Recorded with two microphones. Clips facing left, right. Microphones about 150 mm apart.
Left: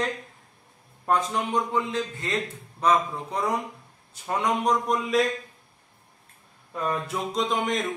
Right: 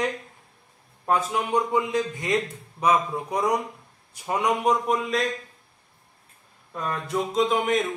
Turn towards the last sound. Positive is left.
turn(degrees=-5)  # may be behind; listen again after turning